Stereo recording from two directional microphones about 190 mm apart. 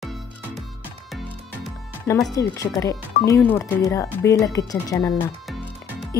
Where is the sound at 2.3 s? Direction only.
15° left (ahead or behind).